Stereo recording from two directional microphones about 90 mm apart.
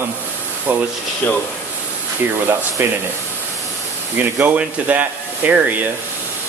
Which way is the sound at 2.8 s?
25° right (ahead or behind).